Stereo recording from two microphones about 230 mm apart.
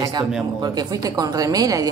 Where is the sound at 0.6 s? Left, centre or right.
Centre.